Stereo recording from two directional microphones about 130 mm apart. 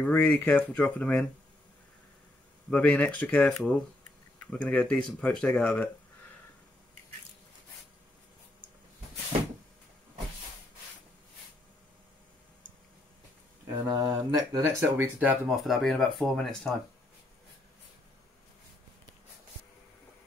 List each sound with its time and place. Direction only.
0.0 s speech: 10° left (ahead or behind)
2.7 s speech: 10° left (ahead or behind)
13.8 s speech: 30° right (ahead or behind)
15.1 s speech: 5° right (ahead or behind)